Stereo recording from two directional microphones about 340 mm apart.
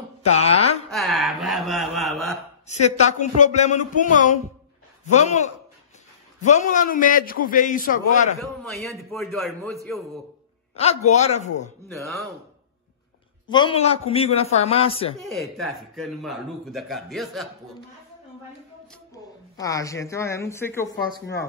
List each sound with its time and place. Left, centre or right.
0.2 s a man's voice: centre
0.8 s speech: centre
2.6 s a man's voice: centre
8.4 s speech: centre
10.8 s a man's voice: centre
13.5 s a man's voice: centre
15.1 s speech: centre
19.6 s a man's voice: centre